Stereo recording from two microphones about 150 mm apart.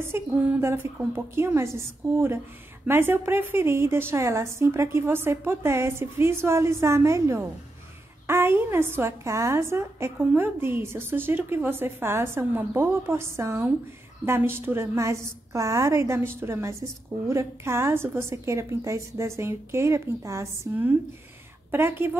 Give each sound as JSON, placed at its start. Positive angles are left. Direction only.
{"t": 0.0, "sound": "a woman's voice", "side_deg": -15}